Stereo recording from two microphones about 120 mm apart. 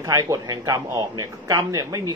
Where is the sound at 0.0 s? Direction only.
25° right (ahead or behind).